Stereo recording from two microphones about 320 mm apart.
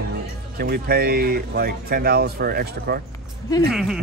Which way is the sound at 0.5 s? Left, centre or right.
Right.